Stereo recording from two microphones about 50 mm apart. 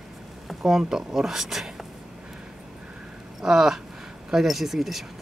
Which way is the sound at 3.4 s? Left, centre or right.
Centre.